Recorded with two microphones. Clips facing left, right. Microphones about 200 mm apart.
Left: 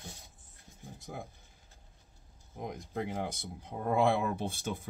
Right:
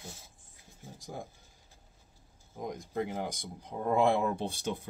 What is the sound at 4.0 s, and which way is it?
Speech, 15° right (ahead or behind).